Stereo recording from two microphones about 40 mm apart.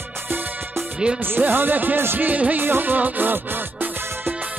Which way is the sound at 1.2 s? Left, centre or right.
Right.